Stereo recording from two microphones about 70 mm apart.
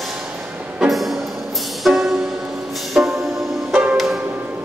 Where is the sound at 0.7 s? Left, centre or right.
Centre.